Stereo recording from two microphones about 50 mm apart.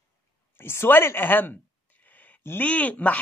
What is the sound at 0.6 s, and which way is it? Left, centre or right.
Speech, left.